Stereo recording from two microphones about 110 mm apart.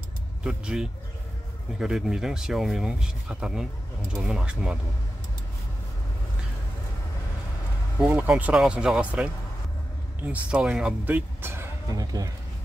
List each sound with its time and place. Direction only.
0.4 s speech: 10° right (ahead or behind)
8.0 s speech: 10° right (ahead or behind)
11.9 s speech: 35° right (ahead or behind)